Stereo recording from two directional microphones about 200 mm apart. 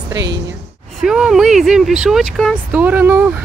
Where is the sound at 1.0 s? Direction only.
Centre (ahead or behind).